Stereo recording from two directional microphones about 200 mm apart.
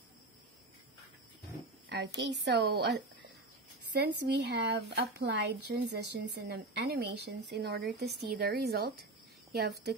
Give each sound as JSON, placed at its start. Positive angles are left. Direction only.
{"t": 1.9, "sound": "a woman's voice", "side_deg": -60}